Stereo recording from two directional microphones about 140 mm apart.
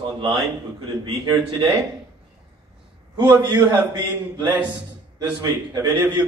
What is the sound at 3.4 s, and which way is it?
A man's voice, 30° right (ahead or behind).